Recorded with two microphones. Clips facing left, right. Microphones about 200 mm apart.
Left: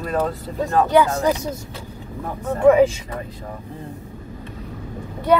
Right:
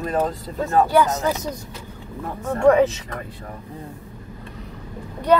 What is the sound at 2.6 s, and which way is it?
Speech, 10° left (ahead or behind).